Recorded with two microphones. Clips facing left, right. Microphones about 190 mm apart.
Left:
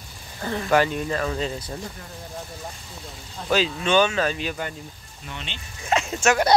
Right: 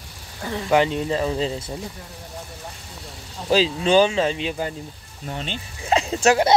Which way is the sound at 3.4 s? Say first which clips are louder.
Right 4 dB; 30° right (ahead or behind).